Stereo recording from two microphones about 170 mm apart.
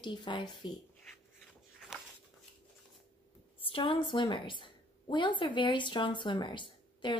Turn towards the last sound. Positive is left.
turn(degrees=30)  # may be behind; listen again after turning